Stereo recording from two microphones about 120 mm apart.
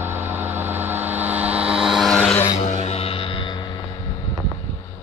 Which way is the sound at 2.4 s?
70° left (ahead or behind).